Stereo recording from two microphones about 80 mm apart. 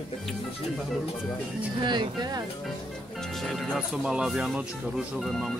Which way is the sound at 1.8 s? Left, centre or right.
Right.